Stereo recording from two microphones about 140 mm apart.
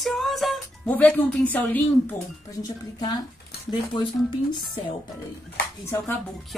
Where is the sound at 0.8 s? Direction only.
10° left (ahead or behind).